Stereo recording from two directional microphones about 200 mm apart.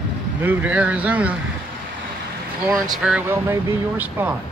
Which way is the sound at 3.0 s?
5° right (ahead or behind).